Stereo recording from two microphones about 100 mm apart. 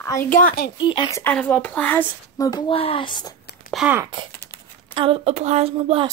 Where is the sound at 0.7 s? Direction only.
50° left (ahead or behind).